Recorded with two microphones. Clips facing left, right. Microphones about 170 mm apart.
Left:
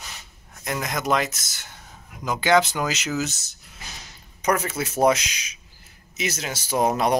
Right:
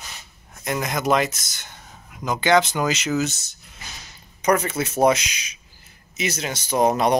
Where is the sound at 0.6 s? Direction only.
5° right (ahead or behind).